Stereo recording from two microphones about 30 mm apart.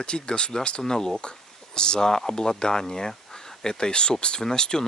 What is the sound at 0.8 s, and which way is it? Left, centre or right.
Speech, centre.